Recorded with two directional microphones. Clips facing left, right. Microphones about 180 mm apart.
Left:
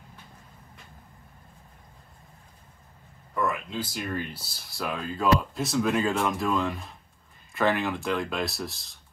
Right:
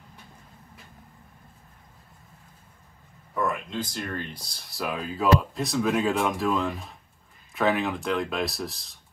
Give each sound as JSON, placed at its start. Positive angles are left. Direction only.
{"t": 3.3, "sound": "speech", "side_deg": 0}